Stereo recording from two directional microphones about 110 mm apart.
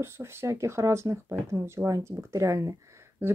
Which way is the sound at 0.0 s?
25° right (ahead or behind).